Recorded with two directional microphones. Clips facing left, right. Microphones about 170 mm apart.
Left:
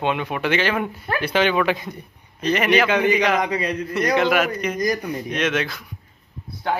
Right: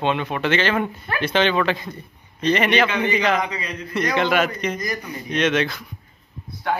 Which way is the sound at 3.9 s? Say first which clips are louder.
Left 1 dB; 5° left (ahead or behind).